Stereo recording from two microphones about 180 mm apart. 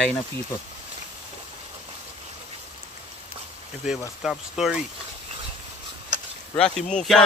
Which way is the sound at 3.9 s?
Centre (ahead or behind).